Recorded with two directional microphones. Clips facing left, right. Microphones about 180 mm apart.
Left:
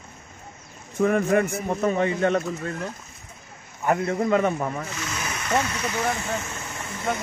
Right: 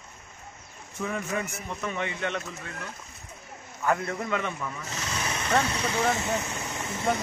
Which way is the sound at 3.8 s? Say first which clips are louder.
Left 5 dB; 25° left (ahead or behind).